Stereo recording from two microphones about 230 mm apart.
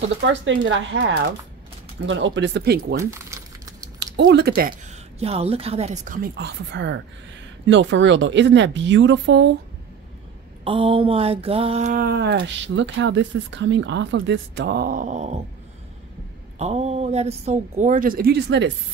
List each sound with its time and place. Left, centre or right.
0.3 s speech: right
3.0 s keys jangling: centre
4.3 s a woman's voice: right
10.6 s speech: right
16.5 s speech: right